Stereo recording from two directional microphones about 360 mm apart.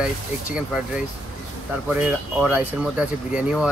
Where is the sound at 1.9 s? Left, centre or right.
Centre.